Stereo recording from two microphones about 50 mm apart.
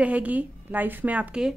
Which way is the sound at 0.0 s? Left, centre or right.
Right.